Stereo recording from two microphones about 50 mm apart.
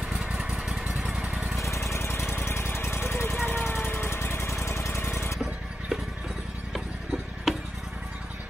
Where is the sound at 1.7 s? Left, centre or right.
Left.